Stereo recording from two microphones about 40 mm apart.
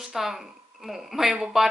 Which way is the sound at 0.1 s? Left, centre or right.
Centre.